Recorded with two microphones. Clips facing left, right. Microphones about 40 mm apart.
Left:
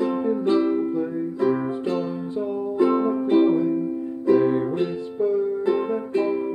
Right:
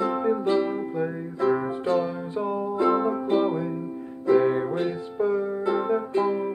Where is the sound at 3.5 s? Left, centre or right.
Centre.